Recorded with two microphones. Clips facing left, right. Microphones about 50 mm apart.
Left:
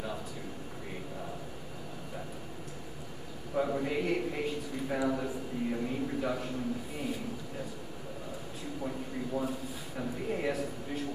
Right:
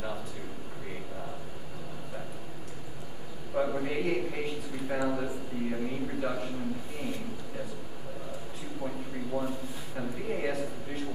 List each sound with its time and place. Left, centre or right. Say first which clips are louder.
3.5 s a man's voice: right 1 dB; centre
8.8 s a sound: right 1 dB; centre
9.9 s a man's voice: right 1 dB; centre